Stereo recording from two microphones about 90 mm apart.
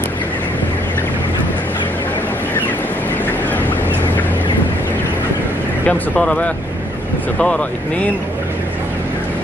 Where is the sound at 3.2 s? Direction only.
20° left (ahead or behind).